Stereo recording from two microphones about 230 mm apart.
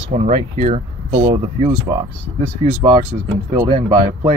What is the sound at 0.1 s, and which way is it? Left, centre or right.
Speech, right.